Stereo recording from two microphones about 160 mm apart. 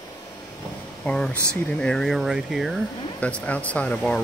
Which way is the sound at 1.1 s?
5° left (ahead or behind).